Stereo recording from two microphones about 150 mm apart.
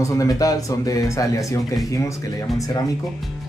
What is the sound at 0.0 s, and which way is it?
Speech, 20° left (ahead or behind).